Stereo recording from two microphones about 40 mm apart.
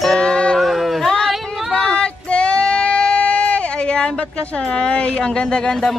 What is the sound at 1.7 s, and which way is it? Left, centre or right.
Child singing, centre.